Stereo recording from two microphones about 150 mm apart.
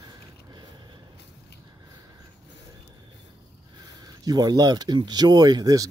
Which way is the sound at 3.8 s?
25° right (ahead or behind).